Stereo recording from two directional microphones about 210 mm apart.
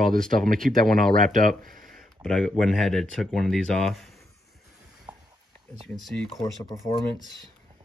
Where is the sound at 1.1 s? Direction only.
40° right (ahead or behind).